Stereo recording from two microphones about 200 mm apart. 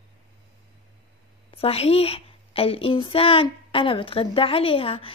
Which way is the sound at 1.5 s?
30° left (ahead or behind).